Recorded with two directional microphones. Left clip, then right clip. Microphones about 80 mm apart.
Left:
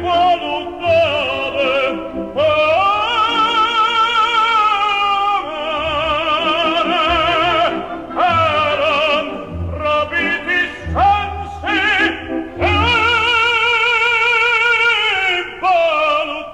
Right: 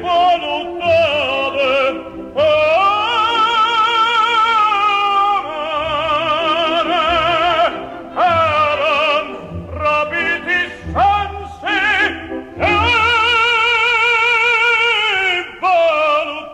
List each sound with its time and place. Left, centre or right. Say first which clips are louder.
0.0 s opera: right 1 dB; left
2.3 s music: right 1 dB; left